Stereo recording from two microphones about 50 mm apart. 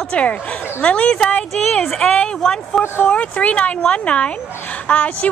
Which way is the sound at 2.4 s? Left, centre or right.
Centre.